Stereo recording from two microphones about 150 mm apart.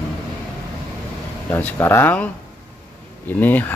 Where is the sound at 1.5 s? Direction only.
15° left (ahead or behind).